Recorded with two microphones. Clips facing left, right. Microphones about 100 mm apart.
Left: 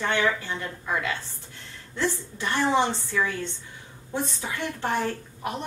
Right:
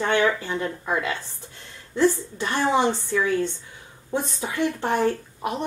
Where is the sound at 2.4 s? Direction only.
15° right (ahead or behind).